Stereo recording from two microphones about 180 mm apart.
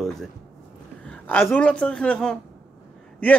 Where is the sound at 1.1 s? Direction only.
10° left (ahead or behind).